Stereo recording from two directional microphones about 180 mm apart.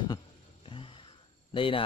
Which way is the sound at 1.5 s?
30° left (ahead or behind).